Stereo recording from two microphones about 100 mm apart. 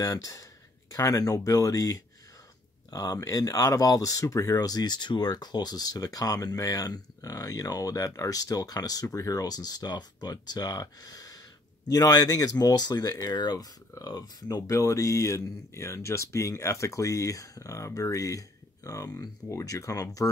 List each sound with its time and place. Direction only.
0.0 s speech: 35° left (ahead or behind)